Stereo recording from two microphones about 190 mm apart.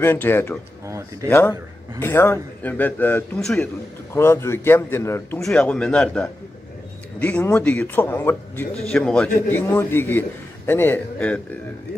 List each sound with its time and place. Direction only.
0.0 s a man's voice: 10° left (ahead or behind)
0.8 s speech: 15° right (ahead or behind)
1.3 s a man's voice: 15° left (ahead or behind)
4.1 s a man's voice: 15° left (ahead or behind)